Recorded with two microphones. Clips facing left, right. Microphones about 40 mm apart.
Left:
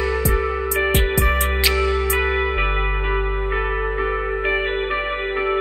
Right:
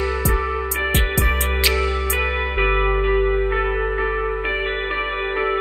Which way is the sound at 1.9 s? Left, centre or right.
Left.